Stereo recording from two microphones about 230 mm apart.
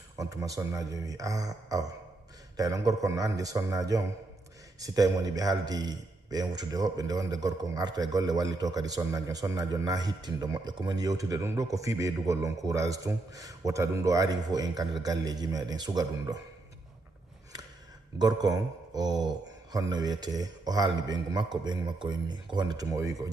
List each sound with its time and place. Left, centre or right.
0.2 s a man's voice: centre
18.2 s a man's voice: centre